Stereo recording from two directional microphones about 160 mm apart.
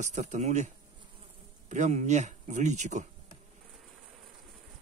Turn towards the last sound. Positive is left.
turn(degrees=-45)  # may be behind; listen again after turning